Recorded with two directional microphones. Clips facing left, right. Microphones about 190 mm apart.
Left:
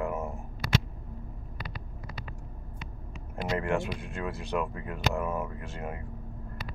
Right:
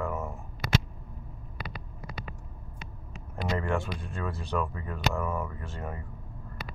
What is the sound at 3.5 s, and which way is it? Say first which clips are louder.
Speech: left 2 dB; 15° left (ahead or behind).